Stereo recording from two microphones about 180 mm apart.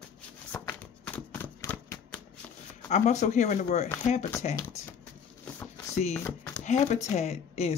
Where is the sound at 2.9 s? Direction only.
40° left (ahead or behind).